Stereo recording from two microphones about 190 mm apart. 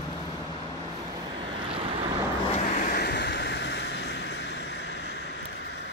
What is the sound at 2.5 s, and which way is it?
Waves, 40° left (ahead or behind).